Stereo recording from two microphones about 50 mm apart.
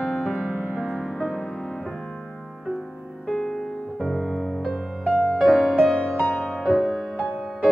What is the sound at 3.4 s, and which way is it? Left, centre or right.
Music, centre.